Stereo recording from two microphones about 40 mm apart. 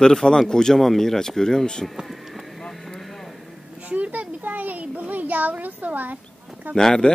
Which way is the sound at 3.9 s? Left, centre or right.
Right.